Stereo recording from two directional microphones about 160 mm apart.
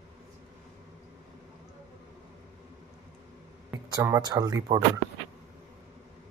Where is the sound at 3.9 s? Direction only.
20° right (ahead or behind).